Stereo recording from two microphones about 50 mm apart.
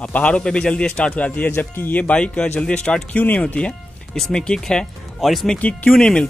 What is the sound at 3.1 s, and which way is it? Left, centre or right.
Speech, left.